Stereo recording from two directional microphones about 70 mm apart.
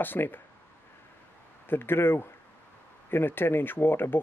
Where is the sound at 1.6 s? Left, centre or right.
Left.